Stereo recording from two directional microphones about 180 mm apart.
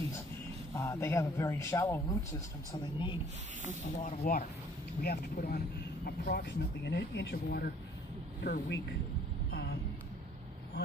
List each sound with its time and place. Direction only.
0.7 s a man's voice: 15° left (ahead or behind)
4.0 s speech: 55° left (ahead or behind)
9.5 s vehicle: 65° left (ahead or behind)